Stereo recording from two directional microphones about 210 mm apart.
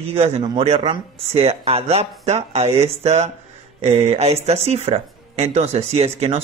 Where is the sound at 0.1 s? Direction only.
30° right (ahead or behind).